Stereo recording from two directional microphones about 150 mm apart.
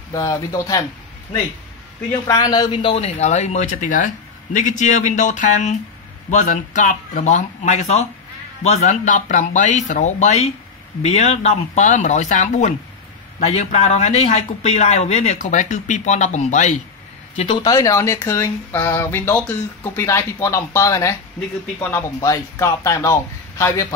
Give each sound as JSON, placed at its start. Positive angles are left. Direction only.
{"t": 0.1, "sound": "speech", "side_deg": 25}
{"t": 2.2, "sound": "speech", "side_deg": 25}
{"t": 17.5, "sound": "speech", "side_deg": 25}